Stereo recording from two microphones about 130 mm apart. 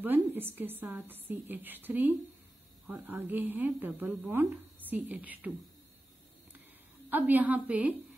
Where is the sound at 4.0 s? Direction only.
5° right (ahead or behind).